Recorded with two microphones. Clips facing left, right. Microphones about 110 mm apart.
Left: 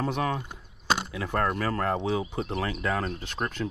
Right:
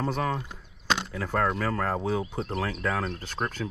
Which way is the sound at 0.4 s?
Centre (ahead or behind).